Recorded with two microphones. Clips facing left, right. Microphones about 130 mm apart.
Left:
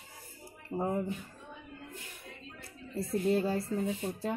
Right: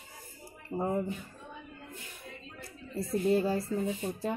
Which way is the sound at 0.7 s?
Centre (ahead or behind).